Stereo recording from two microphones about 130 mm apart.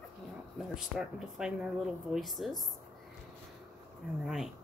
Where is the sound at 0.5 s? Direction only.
5° right (ahead or behind).